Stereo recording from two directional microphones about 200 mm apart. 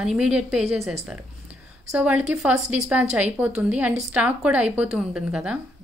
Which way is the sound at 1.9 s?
5° right (ahead or behind).